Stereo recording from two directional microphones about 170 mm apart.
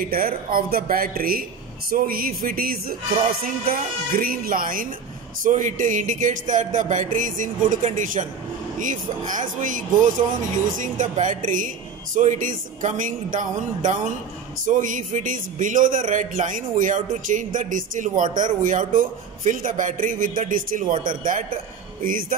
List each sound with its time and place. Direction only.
0.1 s speech: 60° right (ahead or behind)
9.3 s speech: 50° right (ahead or behind)